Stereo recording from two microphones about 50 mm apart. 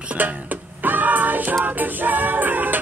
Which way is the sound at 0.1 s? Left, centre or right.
Right.